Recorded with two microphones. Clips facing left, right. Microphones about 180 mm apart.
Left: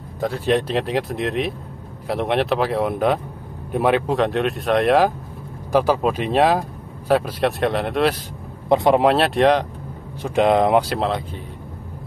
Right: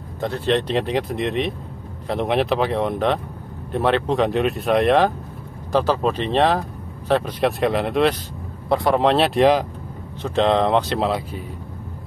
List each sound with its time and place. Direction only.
0.2 s speech: 10° left (ahead or behind)
4.2 s speech: centre (ahead or behind)
8.6 s speech: 20° left (ahead or behind)
9.0 s speech: centre (ahead or behind)
10.2 s speech: 10° left (ahead or behind)
11.0 s speech: 5° right (ahead or behind)